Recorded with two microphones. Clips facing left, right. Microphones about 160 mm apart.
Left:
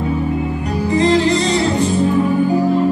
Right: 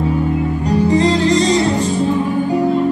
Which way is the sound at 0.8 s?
35° right (ahead or behind).